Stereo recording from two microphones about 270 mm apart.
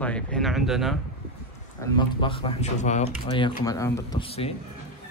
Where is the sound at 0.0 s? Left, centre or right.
Centre.